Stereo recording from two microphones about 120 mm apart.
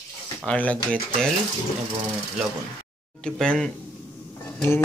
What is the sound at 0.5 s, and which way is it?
Speech, 10° left (ahead or behind).